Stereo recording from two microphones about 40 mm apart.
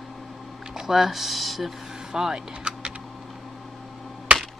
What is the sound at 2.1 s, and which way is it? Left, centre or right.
Keys jangling, centre.